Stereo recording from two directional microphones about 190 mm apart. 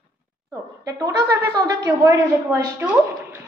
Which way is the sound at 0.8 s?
15° right (ahead or behind).